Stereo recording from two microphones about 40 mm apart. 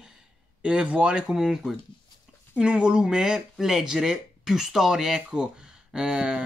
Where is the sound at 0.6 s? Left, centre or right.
Right.